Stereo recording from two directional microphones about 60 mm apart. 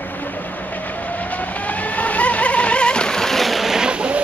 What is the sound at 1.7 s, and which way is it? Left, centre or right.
Vehicle, left.